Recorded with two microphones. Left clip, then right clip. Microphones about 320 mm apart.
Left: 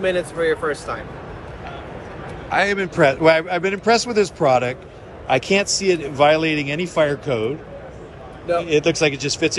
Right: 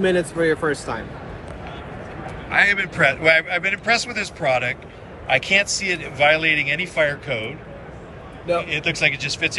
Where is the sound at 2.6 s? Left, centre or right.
Centre.